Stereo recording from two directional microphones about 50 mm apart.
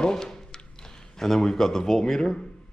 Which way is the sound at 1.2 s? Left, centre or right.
Centre.